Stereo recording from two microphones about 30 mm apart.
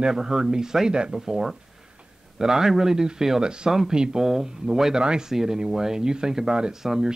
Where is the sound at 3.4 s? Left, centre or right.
Right.